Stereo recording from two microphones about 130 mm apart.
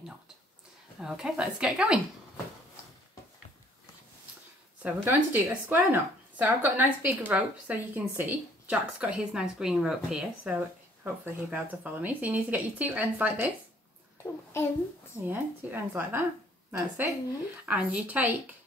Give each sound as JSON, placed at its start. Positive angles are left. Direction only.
{"t": 0.9, "sound": "a woman's voice", "side_deg": -5}
{"t": 4.8, "sound": "speech", "side_deg": -15}
{"t": 14.2, "sound": "a sound", "side_deg": 15}
{"t": 15.2, "sound": "a woman's voice", "side_deg": -15}
{"t": 17.6, "sound": "speech", "side_deg": -10}